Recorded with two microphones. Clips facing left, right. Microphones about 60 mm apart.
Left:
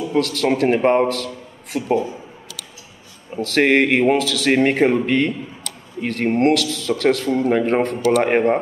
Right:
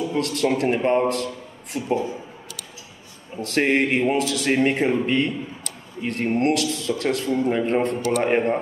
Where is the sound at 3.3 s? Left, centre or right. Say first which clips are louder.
Left 5 dB; left.